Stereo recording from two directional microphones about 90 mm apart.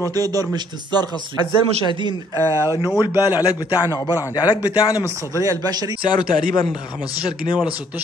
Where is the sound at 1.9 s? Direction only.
60° right (ahead or behind).